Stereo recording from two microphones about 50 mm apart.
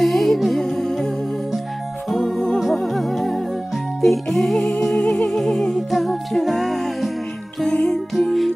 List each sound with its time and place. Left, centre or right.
0.0 s music: centre
7.6 s music: left
8.3 s music: centre